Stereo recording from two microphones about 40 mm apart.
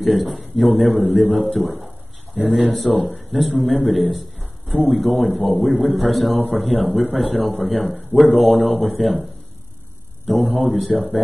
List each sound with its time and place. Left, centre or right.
0.0 s a man's voice: centre
2.9 s speech: left
3.3 s a man's voice: centre
10.2 s a man's voice: centre